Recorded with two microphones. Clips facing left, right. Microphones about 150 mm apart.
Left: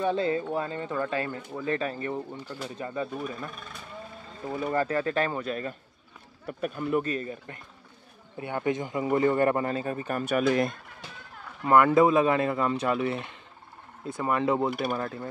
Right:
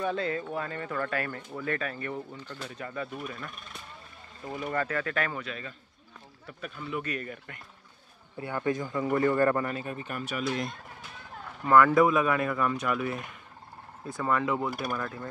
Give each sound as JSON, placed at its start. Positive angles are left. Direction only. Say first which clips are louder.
{"t": 0.0, "sound": "a man's voice", "louder": "left 4 dB", "side_deg": 30}
{"t": 1.8, "sound": "a man's voice", "louder": "left 4 dB", "side_deg": 30}
{"t": 2.1, "sound": "speech", "louder": "left 4 dB", "side_deg": 10}
{"t": 2.8, "sound": "a man's voice", "louder": "left 4 dB", "side_deg": 25}
{"t": 4.6, "sound": "speech", "louder": "left 4 dB", "side_deg": 30}
{"t": 7.0, "sound": "a man's voice", "louder": "left 5 dB", "side_deg": 25}
{"t": 11.6, "sound": "a man's voice", "louder": "left 1 dB", "side_deg": 25}